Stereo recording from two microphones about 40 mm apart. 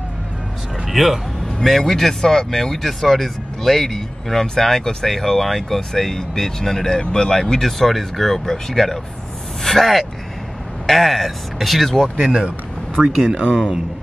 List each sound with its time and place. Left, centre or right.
0.8 s speech: centre
1.6 s speech: centre
13.3 s speech: right